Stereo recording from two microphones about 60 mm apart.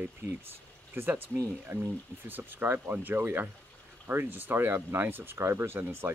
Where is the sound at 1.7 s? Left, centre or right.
Right.